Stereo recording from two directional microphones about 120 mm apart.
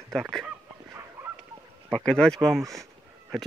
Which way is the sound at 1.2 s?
15° right (ahead or behind).